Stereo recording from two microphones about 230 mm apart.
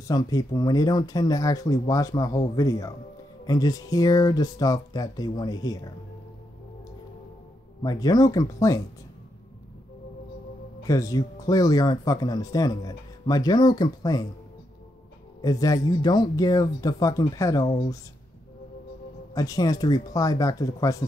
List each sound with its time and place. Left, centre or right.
0.1 s speech: centre
7.8 s speech: centre
10.8 s speech: centre
15.4 s speech: centre
19.3 s speech: centre